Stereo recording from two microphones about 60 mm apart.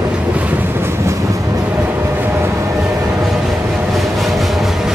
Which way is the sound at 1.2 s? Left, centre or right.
Right.